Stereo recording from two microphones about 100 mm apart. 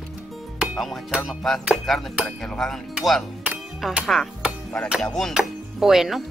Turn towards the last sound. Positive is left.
turn(degrees=-5)  # may be behind; listen again after turning